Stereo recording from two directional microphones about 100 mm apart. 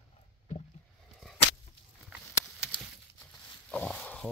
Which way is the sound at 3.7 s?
5° left (ahead or behind).